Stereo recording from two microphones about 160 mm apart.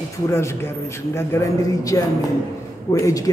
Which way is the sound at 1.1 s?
15° left (ahead or behind).